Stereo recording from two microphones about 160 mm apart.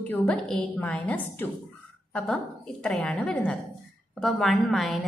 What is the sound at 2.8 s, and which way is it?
A woman's voice, 10° left (ahead or behind).